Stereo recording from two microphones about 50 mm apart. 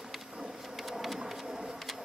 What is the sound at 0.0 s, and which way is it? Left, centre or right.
Printer, centre.